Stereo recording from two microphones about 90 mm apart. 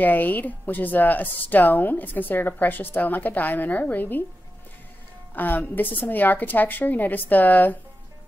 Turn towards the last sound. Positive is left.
turn(degrees=20)  # may be behind; listen again after turning